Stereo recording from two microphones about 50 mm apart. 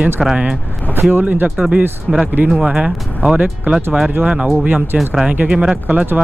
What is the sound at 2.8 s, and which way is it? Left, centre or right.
Speech, centre.